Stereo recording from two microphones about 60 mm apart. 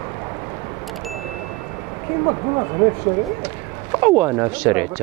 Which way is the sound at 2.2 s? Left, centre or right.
Right.